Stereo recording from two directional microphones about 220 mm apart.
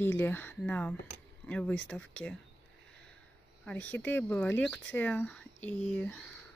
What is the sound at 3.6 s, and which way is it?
Speech, 5° left (ahead or behind).